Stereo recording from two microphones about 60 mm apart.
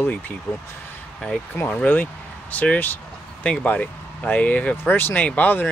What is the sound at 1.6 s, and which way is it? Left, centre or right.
Speech, left.